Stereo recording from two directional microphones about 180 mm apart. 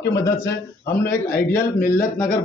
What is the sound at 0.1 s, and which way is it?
Speech, 20° left (ahead or behind).